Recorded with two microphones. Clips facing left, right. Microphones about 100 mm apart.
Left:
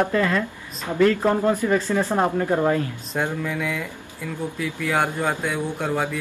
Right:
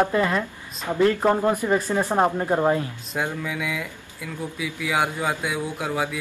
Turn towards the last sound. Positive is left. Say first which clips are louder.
# left 2 dB
turn(degrees=-5)  # may be behind; listen again after turning